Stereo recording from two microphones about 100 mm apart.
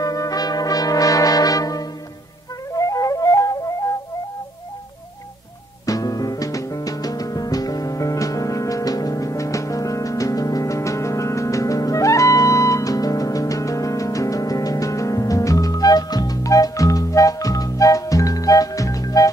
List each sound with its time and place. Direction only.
0.0 s brass instrument: 35° left (ahead or behind)
2.7 s flute: 35° left (ahead or behind)
5.9 s music: 35° left (ahead or behind)